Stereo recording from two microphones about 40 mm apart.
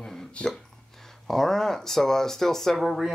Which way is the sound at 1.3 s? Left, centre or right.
Centre.